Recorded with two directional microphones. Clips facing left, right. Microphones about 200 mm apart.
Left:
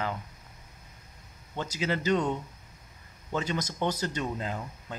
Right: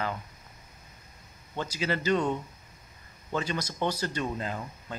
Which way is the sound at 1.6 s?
20° left (ahead or behind).